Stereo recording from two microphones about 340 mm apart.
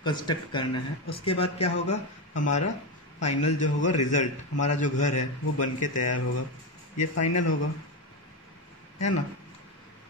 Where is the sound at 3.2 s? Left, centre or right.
Centre.